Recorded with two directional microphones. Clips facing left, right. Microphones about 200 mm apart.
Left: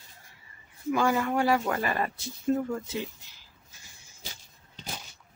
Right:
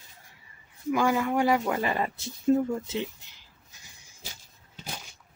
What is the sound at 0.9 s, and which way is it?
Speech, 10° right (ahead or behind).